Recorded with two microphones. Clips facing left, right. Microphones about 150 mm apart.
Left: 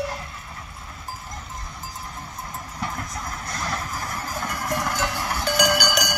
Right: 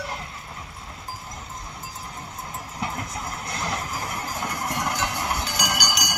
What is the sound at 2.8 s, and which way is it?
Vehicle, 25° right (ahead or behind).